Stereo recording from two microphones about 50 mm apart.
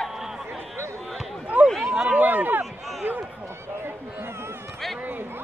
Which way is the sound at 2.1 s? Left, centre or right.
Right.